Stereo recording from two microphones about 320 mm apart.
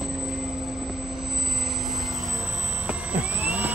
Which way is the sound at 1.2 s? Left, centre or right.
Centre.